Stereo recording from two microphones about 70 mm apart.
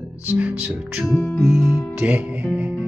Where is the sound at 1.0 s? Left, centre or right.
Left.